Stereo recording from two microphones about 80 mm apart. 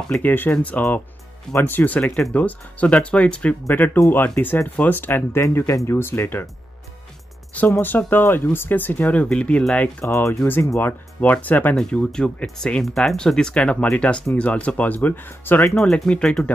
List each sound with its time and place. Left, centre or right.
0.1 s speech: left
8.1 s speech: left; by 10.0 s centre
10.0 s speech: left
10.4 s speech: left
11.7 s speech: centre; by 15.6 s left
15.7 s speech: centre